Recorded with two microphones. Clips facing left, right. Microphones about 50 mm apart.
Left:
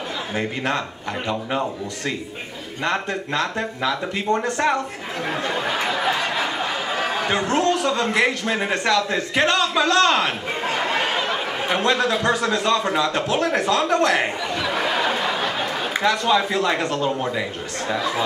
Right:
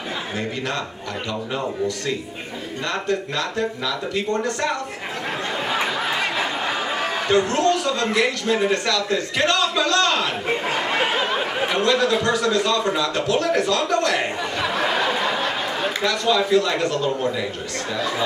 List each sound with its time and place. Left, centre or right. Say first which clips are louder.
2.8 s a man's voice: left 1 dB; left
7.2 s a man's voice: right 3 dB; left
10.6 s a sound: left 3 dB; centre
11.7 s a man's voice: even; left
16.0 s a man's voice: left 2 dB; left